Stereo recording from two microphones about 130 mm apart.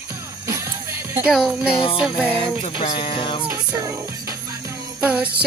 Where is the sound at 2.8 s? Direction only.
40° left (ahead or behind).